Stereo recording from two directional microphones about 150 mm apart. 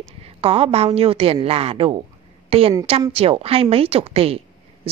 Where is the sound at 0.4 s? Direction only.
40° right (ahead or behind).